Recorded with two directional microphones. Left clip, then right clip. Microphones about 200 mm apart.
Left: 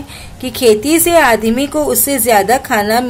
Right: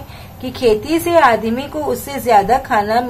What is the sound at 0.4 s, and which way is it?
A woman's voice, 30° left (ahead or behind).